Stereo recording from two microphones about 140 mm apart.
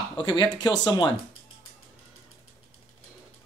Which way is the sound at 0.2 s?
30° left (ahead or behind).